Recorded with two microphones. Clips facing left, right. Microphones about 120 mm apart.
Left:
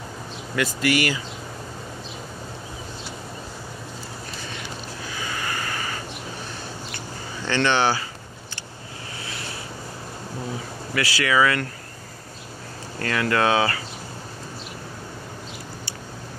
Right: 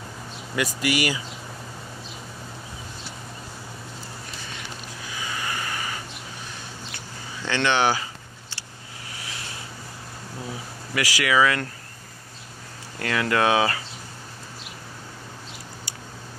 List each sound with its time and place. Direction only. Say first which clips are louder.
0.6 s speech: left 2 dB; 15° right (ahead or behind)
5.2 s vehicle: left 1 dB; 15° right (ahead or behind)
7.4 s speech: left 1 dB; 5° right (ahead or behind)
11.0 s speech: even; 15° right (ahead or behind)
13.0 s speech: even; 15° right (ahead or behind)